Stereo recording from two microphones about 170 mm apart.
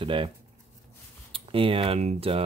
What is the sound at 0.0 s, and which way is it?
Speech, 30° right (ahead or behind).